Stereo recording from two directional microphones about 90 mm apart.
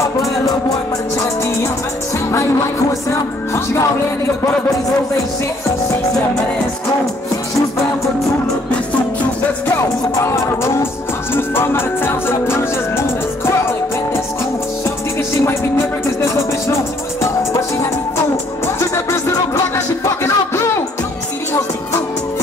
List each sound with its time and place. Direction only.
3.1 s music: 30° left (ahead or behind)
10.1 s music: 30° left (ahead or behind)
18.3 s music: 30° left (ahead or behind)